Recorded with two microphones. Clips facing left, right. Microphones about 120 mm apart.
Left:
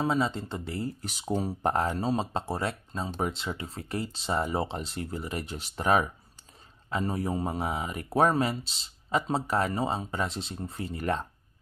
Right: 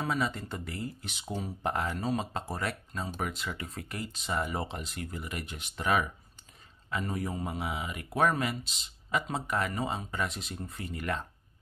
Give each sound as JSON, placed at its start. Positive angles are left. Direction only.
{"t": 0.0, "sound": "speech", "side_deg": 25}